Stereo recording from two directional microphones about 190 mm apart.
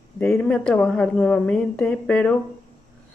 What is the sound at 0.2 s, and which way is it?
Speech, 5° left (ahead or behind).